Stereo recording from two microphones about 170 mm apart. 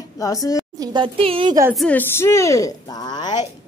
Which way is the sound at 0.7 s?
25° right (ahead or behind).